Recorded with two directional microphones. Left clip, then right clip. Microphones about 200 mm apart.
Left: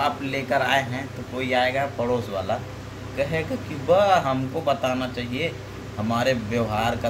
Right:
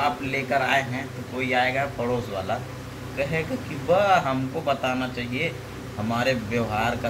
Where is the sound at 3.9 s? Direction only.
15° left (ahead or behind).